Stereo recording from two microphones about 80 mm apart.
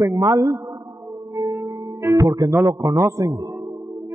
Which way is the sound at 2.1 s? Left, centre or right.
Right.